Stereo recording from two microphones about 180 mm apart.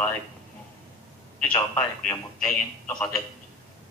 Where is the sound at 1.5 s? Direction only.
20° left (ahead or behind).